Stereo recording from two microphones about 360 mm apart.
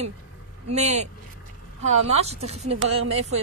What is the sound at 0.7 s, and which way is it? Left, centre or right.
Speech, centre.